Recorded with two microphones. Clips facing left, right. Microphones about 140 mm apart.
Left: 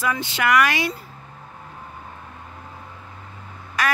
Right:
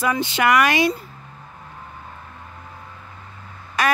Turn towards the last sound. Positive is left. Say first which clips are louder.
# right 3 dB
turn(degrees=-25)  # may be behind; listen again after turning